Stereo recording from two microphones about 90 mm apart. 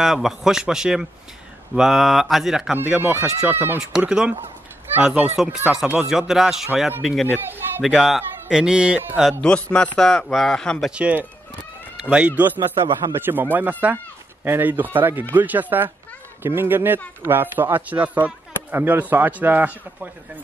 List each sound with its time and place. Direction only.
0.0 s speech: 5° right (ahead or behind)
2.7 s speech: 15° right (ahead or behind)
4.0 s speech: 10° right (ahead or behind)
7.3 s a man's voice: 25° right (ahead or behind)
7.8 s speech: centre (ahead or behind)
9.4 s a man's voice: 10° left (ahead or behind)
10.9 s speech: 15° right (ahead or behind)